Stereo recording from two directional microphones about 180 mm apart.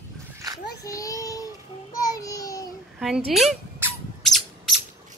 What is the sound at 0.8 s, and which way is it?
Child singing, 20° left (ahead or behind).